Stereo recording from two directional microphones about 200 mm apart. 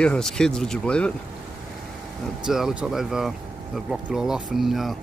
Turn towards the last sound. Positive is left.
turn(degrees=0)  # may be behind; listen again after turning